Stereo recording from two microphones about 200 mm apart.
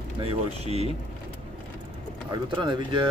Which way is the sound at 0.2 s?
30° right (ahead or behind).